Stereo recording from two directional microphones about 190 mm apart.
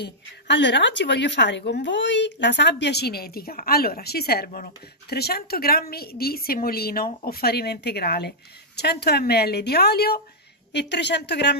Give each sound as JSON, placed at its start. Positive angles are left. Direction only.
{"t": 0.0, "sound": "a woman's voice", "side_deg": 65}